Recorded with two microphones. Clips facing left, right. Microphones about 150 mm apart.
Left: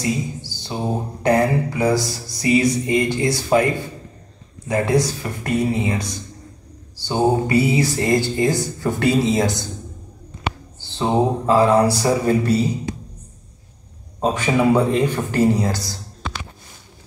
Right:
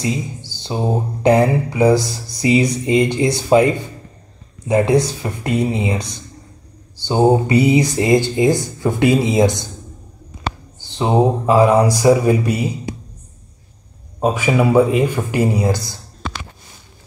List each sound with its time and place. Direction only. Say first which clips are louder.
0.5 s speech: right 6 dB; 20° right (ahead or behind)
10.8 s speech: right 3 dB; 15° right (ahead or behind)
14.2 s speech: right 2 dB; 10° right (ahead or behind)